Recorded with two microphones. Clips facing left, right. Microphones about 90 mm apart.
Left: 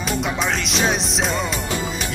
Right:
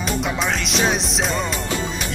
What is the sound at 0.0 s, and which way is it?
Music, centre (ahead or behind).